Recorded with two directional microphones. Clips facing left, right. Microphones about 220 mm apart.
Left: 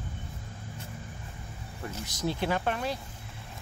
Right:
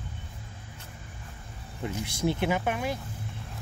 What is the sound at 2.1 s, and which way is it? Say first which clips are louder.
Speech: right 2 dB; 20° right (ahead or behind).